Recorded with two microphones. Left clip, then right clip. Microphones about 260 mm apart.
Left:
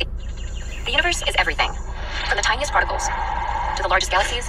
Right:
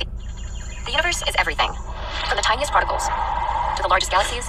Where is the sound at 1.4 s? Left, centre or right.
Right.